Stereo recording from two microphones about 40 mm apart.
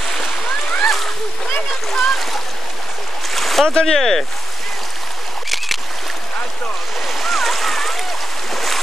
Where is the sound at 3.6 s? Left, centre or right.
Centre.